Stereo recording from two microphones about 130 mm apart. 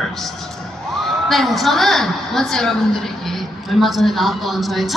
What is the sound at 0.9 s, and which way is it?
A woman's voice, centre (ahead or behind).